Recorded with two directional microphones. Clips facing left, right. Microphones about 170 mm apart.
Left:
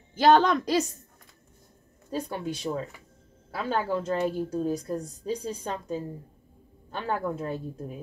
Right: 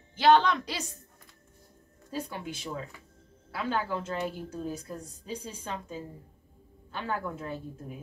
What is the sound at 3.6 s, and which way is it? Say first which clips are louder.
A woman's voice: left 4 dB; 35° left (ahead or behind).